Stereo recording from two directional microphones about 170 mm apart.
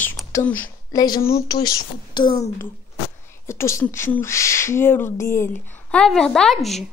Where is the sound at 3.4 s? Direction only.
15° left (ahead or behind).